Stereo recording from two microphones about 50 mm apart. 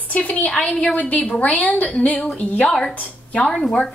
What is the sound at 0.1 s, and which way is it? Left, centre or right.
A woman's voice, left.